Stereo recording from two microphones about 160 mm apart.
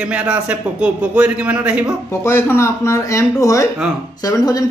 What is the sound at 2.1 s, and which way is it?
Speech, 15° left (ahead or behind).